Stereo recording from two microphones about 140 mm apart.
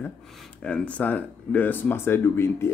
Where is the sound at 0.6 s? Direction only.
10° left (ahead or behind).